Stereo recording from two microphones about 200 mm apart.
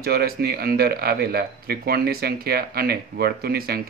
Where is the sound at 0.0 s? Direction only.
50° right (ahead or behind).